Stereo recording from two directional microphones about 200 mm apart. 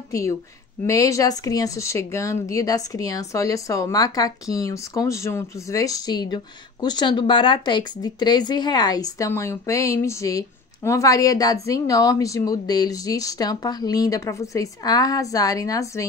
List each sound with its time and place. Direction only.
0.1 s speech: 15° left (ahead or behind)